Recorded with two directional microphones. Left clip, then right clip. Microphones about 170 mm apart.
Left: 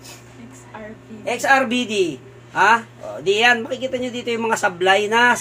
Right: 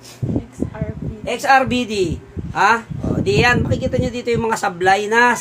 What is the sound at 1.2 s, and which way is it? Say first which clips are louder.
Speech: right 2 dB; 30° right (ahead or behind).